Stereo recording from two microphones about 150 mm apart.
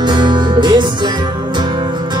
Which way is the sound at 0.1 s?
30° right (ahead or behind).